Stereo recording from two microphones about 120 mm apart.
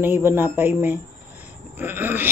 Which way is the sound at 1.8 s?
15° right (ahead or behind).